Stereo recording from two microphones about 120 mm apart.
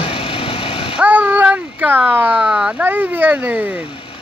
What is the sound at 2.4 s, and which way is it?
Speech, 5° right (ahead or behind).